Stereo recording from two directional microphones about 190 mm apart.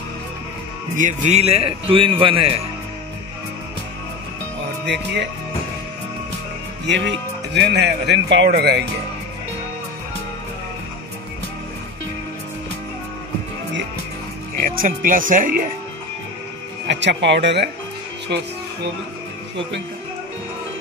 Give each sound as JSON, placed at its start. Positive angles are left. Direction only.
{"t": 0.9, "sound": "a man's voice", "side_deg": -40}
{"t": 6.9, "sound": "speech", "side_deg": -65}
{"t": 14.6, "sound": "speech", "side_deg": -45}
{"t": 16.8, "sound": "speech", "side_deg": -70}